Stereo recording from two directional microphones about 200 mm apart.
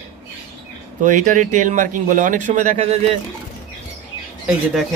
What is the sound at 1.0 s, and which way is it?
A man's voice, 40° right (ahead or behind).